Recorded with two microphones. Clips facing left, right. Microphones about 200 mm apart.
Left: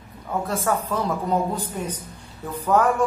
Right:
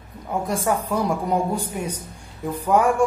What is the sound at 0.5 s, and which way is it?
Speech, 15° right (ahead or behind).